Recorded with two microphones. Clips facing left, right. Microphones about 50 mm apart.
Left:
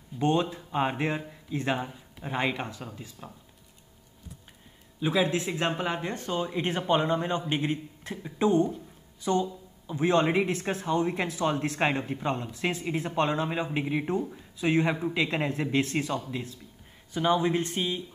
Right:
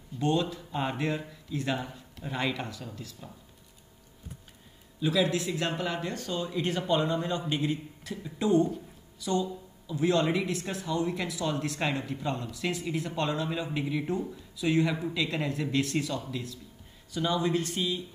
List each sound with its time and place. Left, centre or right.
0.2 s speech: left
5.0 s speech: left